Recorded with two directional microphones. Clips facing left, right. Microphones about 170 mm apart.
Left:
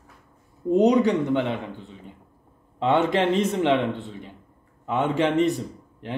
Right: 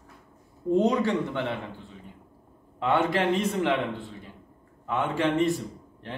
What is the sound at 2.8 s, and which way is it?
A man's voice, 20° left (ahead or behind).